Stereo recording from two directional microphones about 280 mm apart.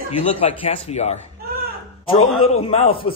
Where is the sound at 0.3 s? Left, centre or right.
Left.